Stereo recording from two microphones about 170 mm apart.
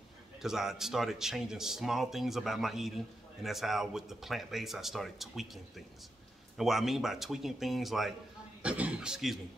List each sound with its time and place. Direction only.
0.4 s a man's voice: centre (ahead or behind)